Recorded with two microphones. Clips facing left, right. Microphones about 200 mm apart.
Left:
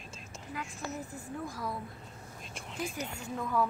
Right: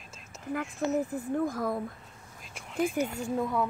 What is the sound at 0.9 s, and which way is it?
Speech, 90° right.